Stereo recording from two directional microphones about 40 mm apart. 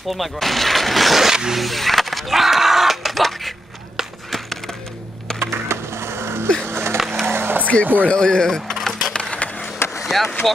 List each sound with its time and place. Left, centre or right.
0.1 s speech: centre
1.3 s skateboard: centre
1.6 s speech: centre
5.4 s skateboard: right
7.2 s skateboard: right
7.6 s speech: left
8.1 s speech: centre
9.3 s skateboard: left
10.0 s speech: centre